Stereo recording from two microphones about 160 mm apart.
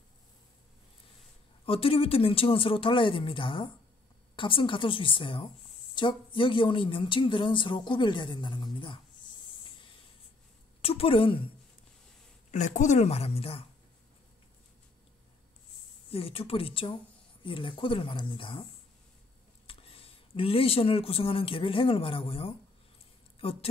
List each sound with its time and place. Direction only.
1.7 s speech: 35° left (ahead or behind)
10.8 s a woman's voice: 35° left (ahead or behind)
12.4 s speech: 50° left (ahead or behind)
16.1 s speech: 35° left (ahead or behind)